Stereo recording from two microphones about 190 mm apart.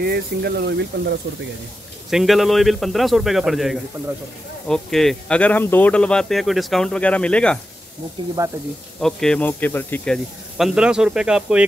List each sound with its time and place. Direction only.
0.0 s speech: 55° right (ahead or behind)
2.0 s speech: centre (ahead or behind)
8.4 s speech: 15° right (ahead or behind)
9.0 s speech: 5° left (ahead or behind)